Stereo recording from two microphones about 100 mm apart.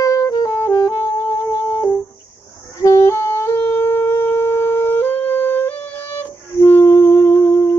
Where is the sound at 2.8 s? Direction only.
30° left (ahead or behind).